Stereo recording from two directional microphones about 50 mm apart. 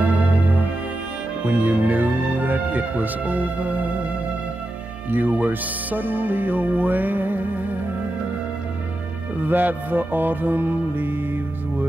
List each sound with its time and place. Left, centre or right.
0.0 s music: right
1.4 s speech: right
5.1 s speech: right
9.4 s speech: right